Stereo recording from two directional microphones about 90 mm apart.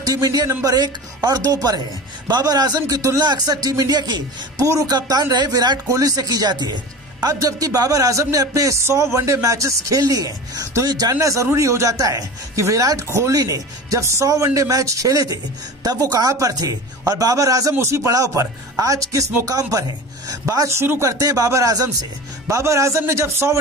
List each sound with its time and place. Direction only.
0.0 s speech: 45° right (ahead or behind)